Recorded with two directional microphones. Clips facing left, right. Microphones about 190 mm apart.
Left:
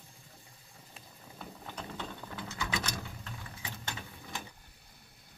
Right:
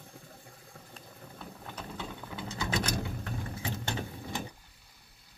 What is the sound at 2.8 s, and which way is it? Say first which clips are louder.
Sewing machine: right 7 dB; 55° right (ahead or behind).